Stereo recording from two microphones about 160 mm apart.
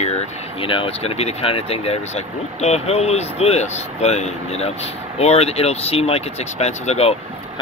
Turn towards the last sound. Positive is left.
turn(degrees=40)  # may be behind; listen again after turning